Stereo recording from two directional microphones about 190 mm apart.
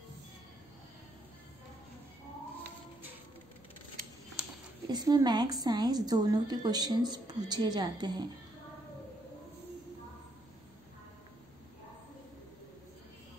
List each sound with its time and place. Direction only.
4.8 s a woman's voice: 20° right (ahead or behind)